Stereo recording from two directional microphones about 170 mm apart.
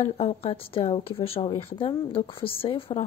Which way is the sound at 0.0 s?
40° left (ahead or behind).